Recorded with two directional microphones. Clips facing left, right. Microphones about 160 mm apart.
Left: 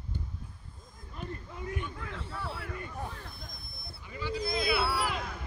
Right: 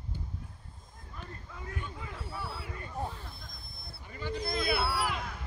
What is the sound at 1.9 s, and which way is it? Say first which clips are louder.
Basketball bounce: left 1 dB; 10° right (ahead or behind).